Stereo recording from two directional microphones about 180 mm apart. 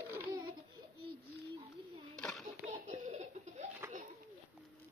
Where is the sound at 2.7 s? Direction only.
40° right (ahead or behind).